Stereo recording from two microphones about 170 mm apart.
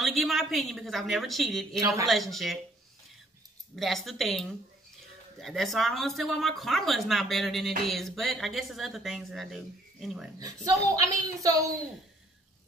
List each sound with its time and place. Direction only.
0.0 s speech: centre (ahead or behind)
3.7 s speech: centre (ahead or behind)
10.4 s a woman's voice: 20° right (ahead or behind)